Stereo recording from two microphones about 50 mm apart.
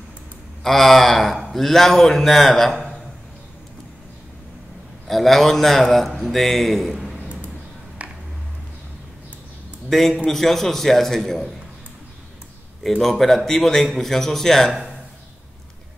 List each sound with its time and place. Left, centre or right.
0.7 s speech: centre
5.0 s speech: centre
8.0 s a sound: right
9.8 s speech: centre
13.0 s speech: centre